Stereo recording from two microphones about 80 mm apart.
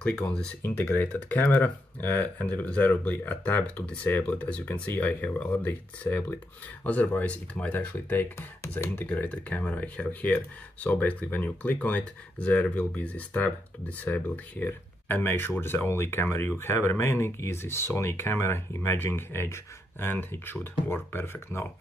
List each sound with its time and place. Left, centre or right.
1.0 s speech: left